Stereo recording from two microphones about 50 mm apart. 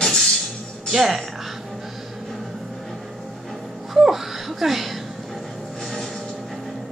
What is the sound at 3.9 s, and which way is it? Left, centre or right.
Music, centre.